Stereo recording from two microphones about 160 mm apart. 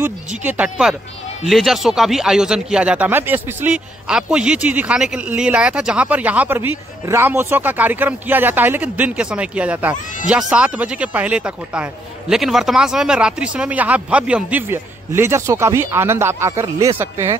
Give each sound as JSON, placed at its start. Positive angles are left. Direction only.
{"t": 0.0, "sound": "speech", "side_deg": -10}